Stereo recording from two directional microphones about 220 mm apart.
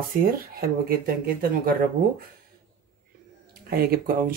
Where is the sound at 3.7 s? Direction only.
45° right (ahead or behind).